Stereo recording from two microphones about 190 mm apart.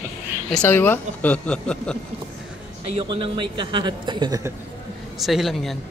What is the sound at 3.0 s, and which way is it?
A man's voice, 25° right (ahead or behind).